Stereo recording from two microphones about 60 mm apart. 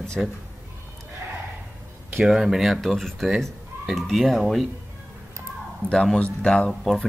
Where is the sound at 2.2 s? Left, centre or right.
Centre.